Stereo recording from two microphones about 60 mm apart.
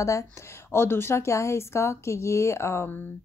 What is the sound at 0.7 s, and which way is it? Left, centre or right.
Speech, left.